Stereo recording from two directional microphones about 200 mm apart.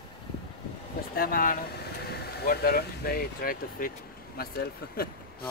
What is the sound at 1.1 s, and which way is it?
Speech, 45° left (ahead or behind).